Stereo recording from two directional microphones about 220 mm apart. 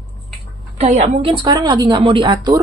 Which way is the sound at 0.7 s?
30° right (ahead or behind).